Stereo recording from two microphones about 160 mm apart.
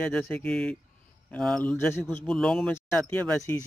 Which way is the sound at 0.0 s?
10° left (ahead or behind).